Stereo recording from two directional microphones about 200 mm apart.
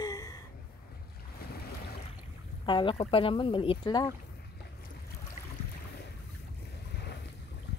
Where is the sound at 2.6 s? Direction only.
25° left (ahead or behind).